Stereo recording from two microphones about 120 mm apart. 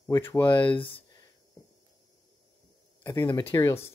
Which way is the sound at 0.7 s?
45° left (ahead or behind).